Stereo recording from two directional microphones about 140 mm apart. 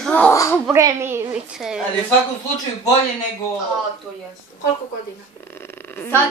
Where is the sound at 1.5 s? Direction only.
5° right (ahead or behind).